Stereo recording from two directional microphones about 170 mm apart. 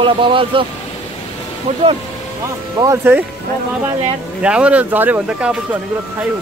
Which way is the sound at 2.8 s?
15° right (ahead or behind).